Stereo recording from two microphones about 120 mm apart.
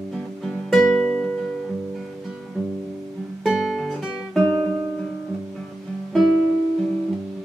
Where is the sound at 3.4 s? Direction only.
Centre (ahead or behind).